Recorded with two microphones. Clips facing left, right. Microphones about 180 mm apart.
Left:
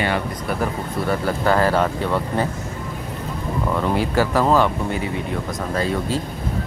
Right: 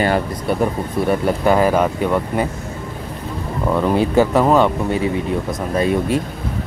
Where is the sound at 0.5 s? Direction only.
25° right (ahead or behind).